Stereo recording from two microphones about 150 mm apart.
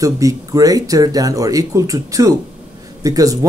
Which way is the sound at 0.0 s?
25° right (ahead or behind).